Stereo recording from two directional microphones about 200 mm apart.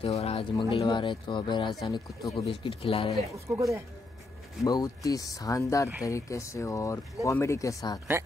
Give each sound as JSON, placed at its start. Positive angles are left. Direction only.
{"t": 0.0, "sound": "speech", "side_deg": 30}
{"t": 3.3, "sound": "speech", "side_deg": -15}
{"t": 4.6, "sound": "speech", "side_deg": 15}